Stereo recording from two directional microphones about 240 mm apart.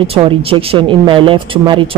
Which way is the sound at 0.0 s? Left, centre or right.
Right.